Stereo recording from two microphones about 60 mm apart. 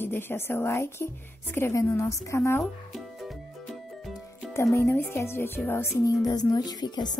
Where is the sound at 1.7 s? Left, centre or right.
Left.